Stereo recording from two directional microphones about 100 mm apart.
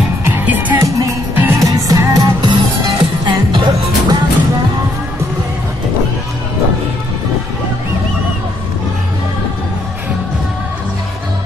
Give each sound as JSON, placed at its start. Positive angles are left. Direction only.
{"t": 0.2, "sound": "music", "side_deg": -20}
{"t": 0.8, "sound": "music", "side_deg": -35}
{"t": 1.3, "sound": "music", "side_deg": -20}
{"t": 1.6, "sound": "music", "side_deg": -35}
{"t": 2.5, "sound": "music", "side_deg": -55}